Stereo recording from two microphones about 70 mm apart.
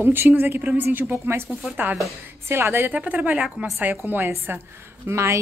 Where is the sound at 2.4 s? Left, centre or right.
Right.